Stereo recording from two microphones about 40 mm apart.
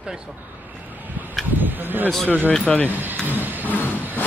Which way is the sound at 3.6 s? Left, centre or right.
Left.